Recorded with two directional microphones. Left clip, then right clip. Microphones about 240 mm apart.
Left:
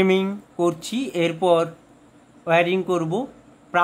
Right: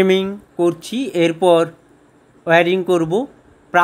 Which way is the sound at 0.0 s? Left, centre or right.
Centre.